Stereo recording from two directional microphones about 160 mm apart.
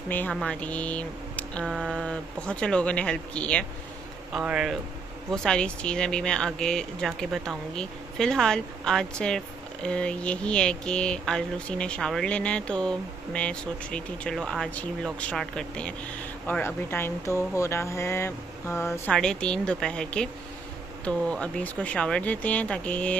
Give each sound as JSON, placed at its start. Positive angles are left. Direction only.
{"t": 0.1, "sound": "speech", "side_deg": 10}
{"t": 4.3, "sound": "speech", "side_deg": -5}
{"t": 19.1, "sound": "speech", "side_deg": 5}